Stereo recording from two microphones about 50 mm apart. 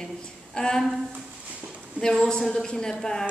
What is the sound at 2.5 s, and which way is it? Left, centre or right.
Speech, centre.